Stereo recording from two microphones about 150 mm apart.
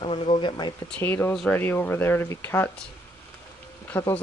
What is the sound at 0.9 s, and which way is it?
Speech, 15° left (ahead or behind).